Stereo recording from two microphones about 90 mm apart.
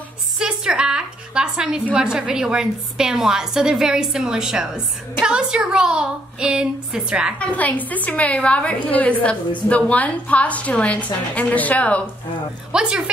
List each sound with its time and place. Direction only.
0.4 s a woman's voice: 10° right (ahead or behind)
7.3 s a woman's voice: 20° left (ahead or behind)
12.7 s a woman's voice: 10° right (ahead or behind)